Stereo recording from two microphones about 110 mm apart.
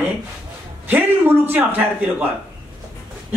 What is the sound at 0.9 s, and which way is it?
A man's voice, 20° right (ahead or behind).